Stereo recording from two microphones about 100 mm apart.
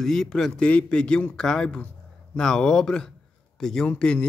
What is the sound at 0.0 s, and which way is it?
Speech, 5° left (ahead or behind).